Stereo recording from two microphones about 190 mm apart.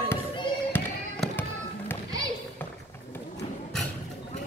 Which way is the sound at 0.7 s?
10° left (ahead or behind).